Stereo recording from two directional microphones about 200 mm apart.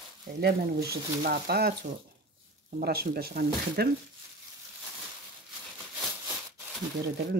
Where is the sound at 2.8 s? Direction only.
50° right (ahead or behind).